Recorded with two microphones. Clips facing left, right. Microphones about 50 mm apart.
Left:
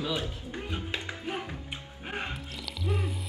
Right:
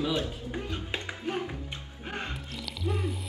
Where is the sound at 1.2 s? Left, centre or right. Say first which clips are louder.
Right 3 dB; centre.